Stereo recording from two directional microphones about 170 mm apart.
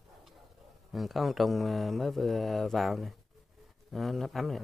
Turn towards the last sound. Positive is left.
turn(degrees=0)  # may be behind; listen again after turning